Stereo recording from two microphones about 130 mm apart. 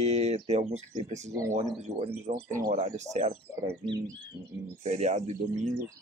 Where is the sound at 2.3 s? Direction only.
80° right.